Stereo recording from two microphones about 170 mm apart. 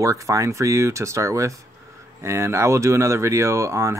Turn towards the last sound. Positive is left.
turn(degrees=-15)  # may be behind; listen again after turning